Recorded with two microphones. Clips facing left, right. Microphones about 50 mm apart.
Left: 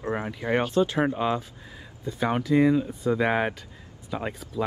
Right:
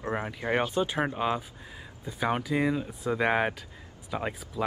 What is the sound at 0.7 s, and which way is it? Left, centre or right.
Speech, centre.